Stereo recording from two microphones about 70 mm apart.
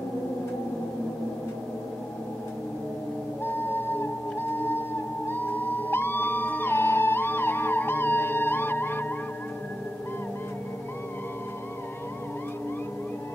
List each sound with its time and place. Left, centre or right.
3.4 s music: left